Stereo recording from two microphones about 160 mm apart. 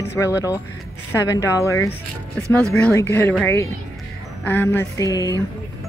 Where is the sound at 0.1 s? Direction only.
20° left (ahead or behind).